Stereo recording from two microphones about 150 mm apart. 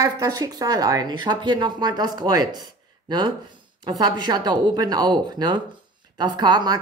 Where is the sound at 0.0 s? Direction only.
25° right (ahead or behind).